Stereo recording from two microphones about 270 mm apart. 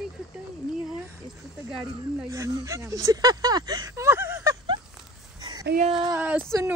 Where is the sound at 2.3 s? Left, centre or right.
Centre.